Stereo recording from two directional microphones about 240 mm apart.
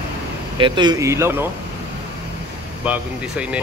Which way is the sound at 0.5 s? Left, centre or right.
Centre.